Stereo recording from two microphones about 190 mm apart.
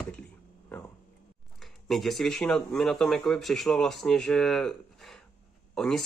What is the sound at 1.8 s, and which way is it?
Speech, centre (ahead or behind).